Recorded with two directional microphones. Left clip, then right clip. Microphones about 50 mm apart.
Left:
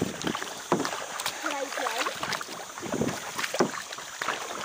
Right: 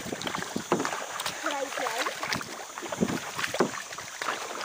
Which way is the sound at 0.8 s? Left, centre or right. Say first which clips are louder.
Even; right.